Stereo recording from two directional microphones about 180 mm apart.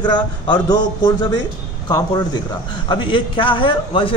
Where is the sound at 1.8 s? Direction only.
20° left (ahead or behind).